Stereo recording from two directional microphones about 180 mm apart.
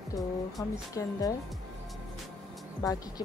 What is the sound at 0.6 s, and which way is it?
Speech, 20° left (ahead or behind).